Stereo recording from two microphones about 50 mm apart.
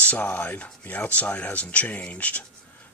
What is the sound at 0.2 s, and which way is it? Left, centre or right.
Speech, left.